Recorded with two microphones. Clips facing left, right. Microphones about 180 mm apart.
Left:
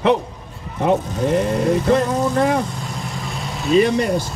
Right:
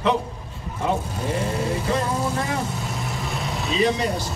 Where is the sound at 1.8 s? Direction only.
60° left (ahead or behind).